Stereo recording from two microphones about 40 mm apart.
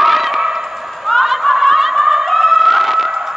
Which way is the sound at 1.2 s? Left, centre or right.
Centre.